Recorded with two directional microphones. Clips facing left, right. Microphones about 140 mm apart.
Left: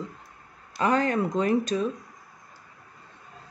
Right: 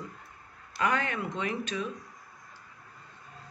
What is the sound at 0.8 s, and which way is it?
Speech, 35° left (ahead or behind).